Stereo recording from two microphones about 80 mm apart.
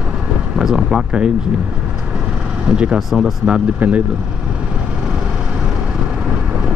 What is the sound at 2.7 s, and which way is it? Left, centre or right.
Speech, centre.